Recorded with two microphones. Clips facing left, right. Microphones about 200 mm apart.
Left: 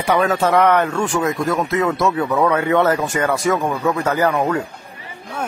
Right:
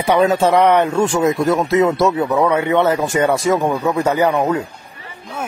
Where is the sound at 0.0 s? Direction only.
20° right (ahead or behind).